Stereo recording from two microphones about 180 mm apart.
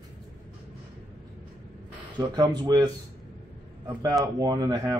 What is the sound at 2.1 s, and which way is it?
Speech, 25° right (ahead or behind).